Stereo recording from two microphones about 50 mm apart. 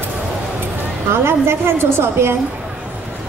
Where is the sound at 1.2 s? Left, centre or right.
Right.